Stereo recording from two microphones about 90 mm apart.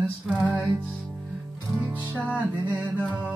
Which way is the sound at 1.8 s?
20° right (ahead or behind).